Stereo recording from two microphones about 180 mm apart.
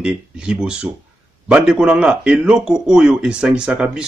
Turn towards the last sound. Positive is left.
turn(degrees=-5)  # may be behind; listen again after turning